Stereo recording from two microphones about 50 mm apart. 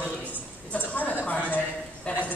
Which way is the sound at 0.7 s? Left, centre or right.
Left.